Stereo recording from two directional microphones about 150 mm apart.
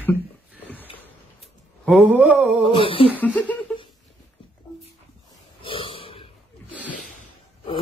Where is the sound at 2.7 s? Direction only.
35° left (ahead or behind).